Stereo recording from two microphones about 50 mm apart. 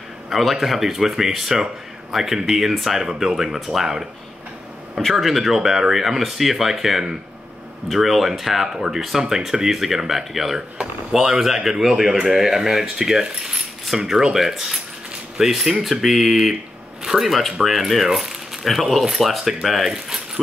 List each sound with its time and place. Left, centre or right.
0.3 s speech: centre
5.0 s speech: centre